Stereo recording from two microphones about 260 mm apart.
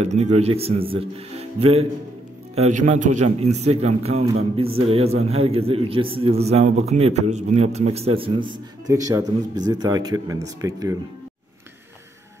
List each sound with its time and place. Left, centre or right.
0.0 s a man's voice: right